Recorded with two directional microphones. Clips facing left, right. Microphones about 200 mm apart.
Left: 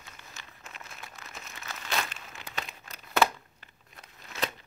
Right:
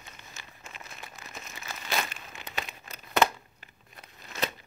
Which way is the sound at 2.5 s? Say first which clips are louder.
Right 2 dB; 10° right (ahead or behind).